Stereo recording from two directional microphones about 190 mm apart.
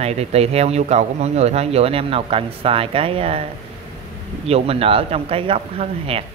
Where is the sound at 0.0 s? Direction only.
35° right (ahead or behind).